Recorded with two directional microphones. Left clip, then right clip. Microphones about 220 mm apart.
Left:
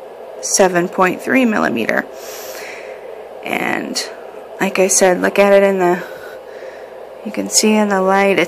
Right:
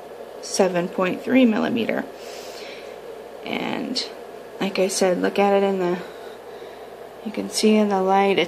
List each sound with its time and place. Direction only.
0.6 s a woman's voice: 15° left (ahead or behind)
3.4 s a woman's voice: 10° left (ahead or behind)
7.5 s a woman's voice: 15° left (ahead or behind)